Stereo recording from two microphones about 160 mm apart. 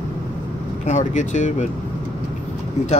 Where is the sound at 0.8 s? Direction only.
45° left (ahead or behind).